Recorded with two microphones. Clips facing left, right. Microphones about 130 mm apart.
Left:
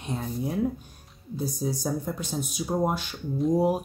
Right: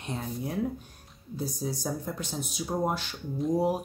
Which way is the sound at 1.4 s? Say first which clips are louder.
Left 3 dB; 15° left (ahead or behind).